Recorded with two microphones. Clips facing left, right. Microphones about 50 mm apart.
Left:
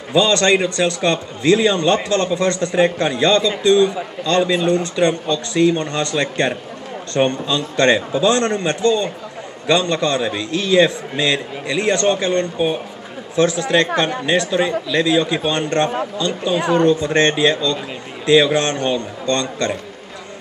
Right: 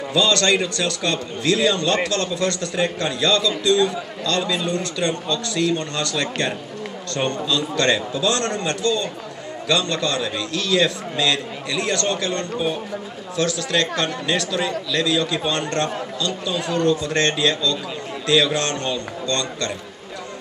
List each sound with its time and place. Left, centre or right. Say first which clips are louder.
0.1 s a man's voice: left 4 dB; left